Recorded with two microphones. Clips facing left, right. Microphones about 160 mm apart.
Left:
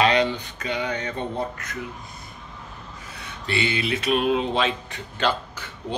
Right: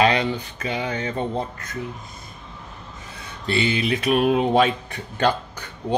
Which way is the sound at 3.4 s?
45° right (ahead or behind).